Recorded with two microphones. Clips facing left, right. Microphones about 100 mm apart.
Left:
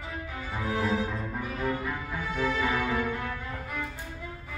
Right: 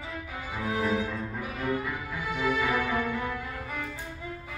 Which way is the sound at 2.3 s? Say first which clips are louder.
Right 1 dB; 10° right (ahead or behind).